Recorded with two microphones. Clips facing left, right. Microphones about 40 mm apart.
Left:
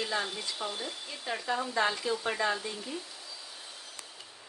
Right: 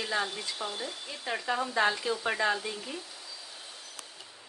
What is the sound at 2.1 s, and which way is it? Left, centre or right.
Stir, centre.